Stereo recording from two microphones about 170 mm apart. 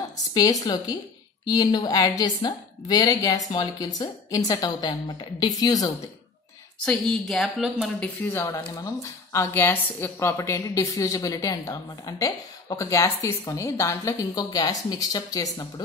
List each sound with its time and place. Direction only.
0.3 s a woman's voice: 25° left (ahead or behind)
6.8 s a woman's voice: 5° left (ahead or behind)
8.3 s a woman's voice: 15° left (ahead or behind)